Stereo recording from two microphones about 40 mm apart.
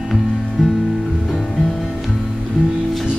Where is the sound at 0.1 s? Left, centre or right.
Centre.